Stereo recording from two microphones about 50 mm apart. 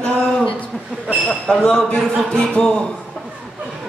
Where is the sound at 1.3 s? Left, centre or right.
Left.